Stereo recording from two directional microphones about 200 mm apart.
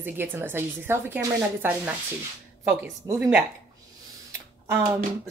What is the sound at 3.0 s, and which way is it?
Speech, 15° right (ahead or behind).